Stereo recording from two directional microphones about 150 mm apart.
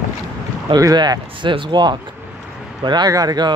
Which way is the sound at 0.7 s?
25° right (ahead or behind).